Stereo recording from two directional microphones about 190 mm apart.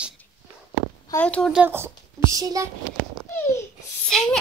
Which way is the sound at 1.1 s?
10° left (ahead or behind).